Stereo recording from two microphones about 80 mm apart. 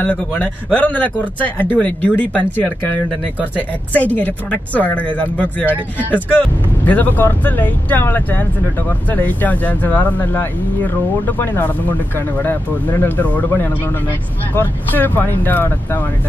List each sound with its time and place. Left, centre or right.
0.0 s speech: centre